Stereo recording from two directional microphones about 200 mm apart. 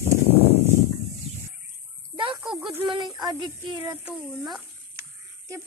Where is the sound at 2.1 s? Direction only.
25° right (ahead or behind).